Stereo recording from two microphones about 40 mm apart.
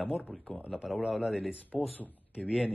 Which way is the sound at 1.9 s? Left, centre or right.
Left.